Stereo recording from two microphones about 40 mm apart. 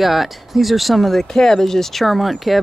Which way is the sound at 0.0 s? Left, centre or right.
Centre.